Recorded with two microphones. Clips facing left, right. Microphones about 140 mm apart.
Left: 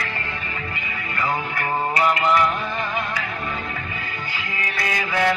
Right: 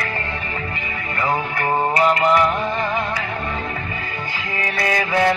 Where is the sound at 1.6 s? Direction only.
35° right (ahead or behind).